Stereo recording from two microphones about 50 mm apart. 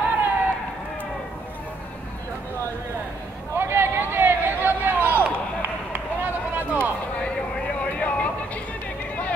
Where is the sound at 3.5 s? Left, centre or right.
Right.